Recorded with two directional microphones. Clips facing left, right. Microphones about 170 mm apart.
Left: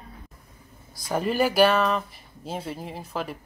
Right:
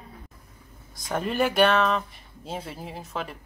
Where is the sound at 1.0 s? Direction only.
5° left (ahead or behind).